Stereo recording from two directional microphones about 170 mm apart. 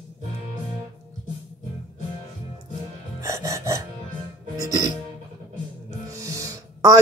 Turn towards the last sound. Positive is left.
turn(degrees=-20)  # may be behind; listen again after turning